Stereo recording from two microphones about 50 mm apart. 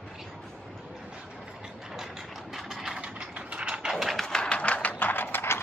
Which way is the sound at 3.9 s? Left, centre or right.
Centre.